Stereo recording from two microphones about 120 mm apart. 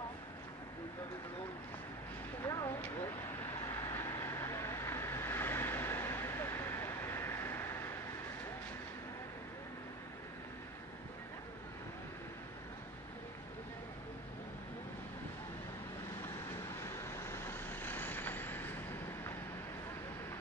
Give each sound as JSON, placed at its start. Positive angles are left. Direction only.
{"t": 2.4, "sound": "a sound", "side_deg": 25}
{"t": 3.6, "sound": "vehicle", "side_deg": 20}
{"t": 16.8, "sound": "vehicle", "side_deg": 20}